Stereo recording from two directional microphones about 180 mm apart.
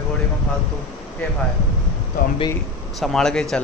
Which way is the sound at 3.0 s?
5° left (ahead or behind).